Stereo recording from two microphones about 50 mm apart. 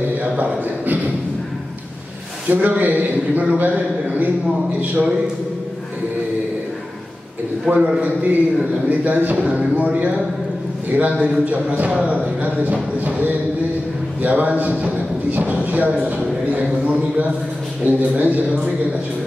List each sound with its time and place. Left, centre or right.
0.2 s a sound: right
2.4 s a man's voice: right
7.7 s a man's voice: right
8.0 s a man's voice: right
17.8 s a man's voice: right